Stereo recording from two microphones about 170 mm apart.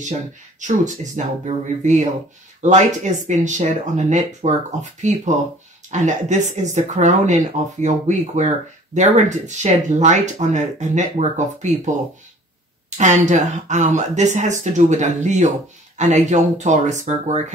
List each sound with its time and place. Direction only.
0.6 s speech: 45° right (ahead or behind)
12.9 s speech: 45° right (ahead or behind)